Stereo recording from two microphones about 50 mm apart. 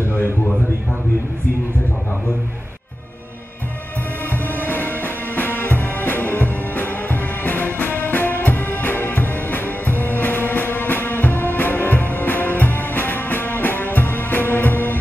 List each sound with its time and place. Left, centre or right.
4.3 s music: left